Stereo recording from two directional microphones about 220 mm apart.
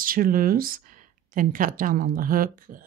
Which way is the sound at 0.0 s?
40° right (ahead or behind).